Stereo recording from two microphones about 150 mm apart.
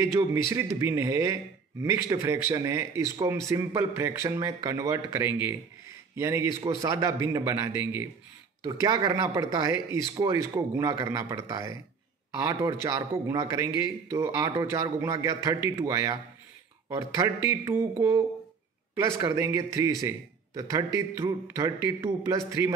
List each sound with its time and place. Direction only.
0.5 s a man's voice: 20° right (ahead or behind)
8.8 s a man's voice: 30° right (ahead or behind)
19.2 s a man's voice: 20° right (ahead or behind)